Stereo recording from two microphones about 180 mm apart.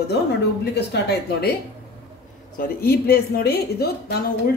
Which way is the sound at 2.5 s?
60° left (ahead or behind).